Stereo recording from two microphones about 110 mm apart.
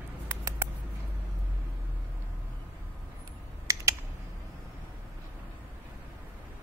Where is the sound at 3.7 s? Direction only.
30° right (ahead or behind).